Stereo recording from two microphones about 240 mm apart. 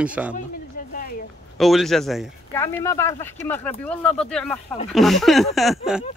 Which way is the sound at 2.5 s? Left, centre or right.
Centre.